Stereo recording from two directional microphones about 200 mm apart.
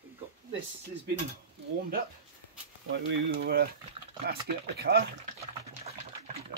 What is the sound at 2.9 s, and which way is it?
Speech, 65° right (ahead or behind).